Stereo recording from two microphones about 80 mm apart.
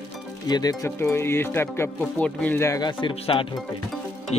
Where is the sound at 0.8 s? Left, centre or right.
Left.